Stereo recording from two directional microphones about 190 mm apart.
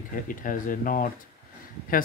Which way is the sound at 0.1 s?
45° left (ahead or behind).